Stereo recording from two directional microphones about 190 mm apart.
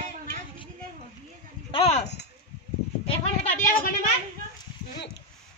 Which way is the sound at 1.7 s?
30° left (ahead or behind).